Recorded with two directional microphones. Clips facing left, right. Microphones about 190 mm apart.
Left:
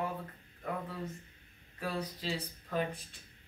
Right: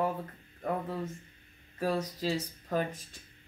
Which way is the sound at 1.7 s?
40° right (ahead or behind).